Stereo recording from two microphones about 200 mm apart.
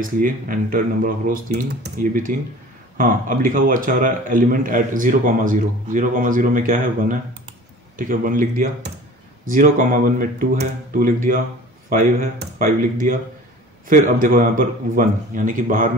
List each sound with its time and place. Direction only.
0.0 s a man's voice: 45° right (ahead or behind)